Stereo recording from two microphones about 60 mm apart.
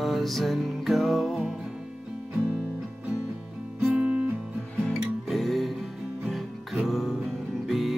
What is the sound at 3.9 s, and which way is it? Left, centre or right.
Music, right.